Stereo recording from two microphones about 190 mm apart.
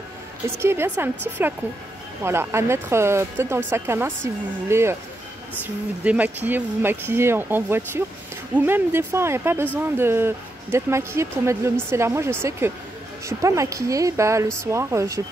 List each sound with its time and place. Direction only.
0.6 s speech: 15° right (ahead or behind)
6.0 s speech: 10° right (ahead or behind)